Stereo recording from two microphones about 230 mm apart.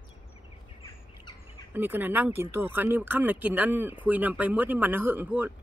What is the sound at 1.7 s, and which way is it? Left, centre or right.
Speech, centre.